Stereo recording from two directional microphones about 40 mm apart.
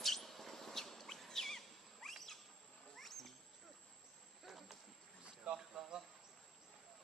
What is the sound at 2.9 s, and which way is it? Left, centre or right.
Wild animals, centre.